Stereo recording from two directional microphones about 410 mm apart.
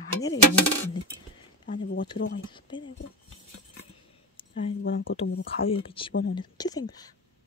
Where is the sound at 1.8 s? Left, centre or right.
Left.